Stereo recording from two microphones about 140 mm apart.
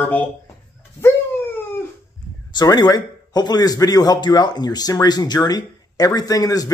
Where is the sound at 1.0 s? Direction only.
15° left (ahead or behind).